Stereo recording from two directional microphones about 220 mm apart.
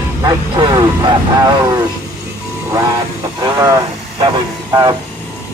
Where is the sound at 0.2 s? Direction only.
15° right (ahead or behind).